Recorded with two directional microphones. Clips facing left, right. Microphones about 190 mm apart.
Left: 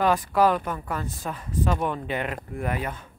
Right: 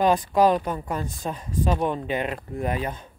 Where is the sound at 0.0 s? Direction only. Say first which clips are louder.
Right 2 dB; 20° right (ahead or behind).